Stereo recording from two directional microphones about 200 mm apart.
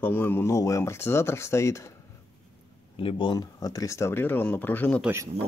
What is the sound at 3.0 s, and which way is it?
Speech, 25° left (ahead or behind).